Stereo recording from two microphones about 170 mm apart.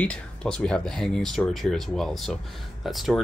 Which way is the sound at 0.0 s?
5° left (ahead or behind).